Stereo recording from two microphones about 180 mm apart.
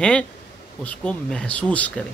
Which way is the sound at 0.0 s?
5° left (ahead or behind).